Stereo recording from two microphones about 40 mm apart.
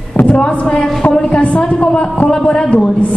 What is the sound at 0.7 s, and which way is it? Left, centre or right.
A woman's voice, left.